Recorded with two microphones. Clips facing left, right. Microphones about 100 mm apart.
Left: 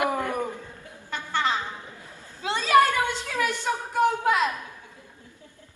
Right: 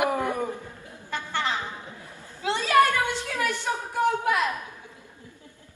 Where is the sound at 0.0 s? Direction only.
20° right (ahead or behind).